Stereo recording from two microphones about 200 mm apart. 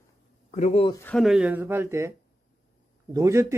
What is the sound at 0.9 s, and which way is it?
Speech, 5° left (ahead or behind).